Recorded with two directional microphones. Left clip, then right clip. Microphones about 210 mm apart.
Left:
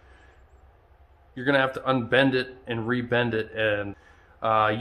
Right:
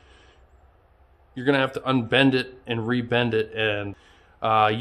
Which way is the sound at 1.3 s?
35° right (ahead or behind).